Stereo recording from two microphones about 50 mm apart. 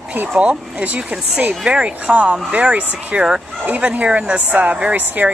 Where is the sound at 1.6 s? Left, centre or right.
Right.